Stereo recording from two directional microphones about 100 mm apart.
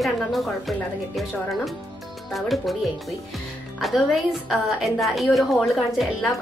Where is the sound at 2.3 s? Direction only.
Centre (ahead or behind).